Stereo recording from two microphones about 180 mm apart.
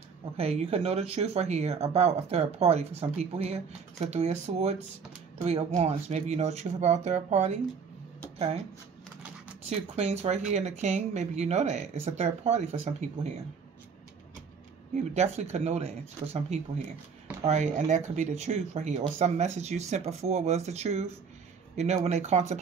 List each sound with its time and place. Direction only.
0.4 s speech: 35° right (ahead or behind)
9.7 s speech: 35° right (ahead or behind)
15.5 s speech: 35° right (ahead or behind)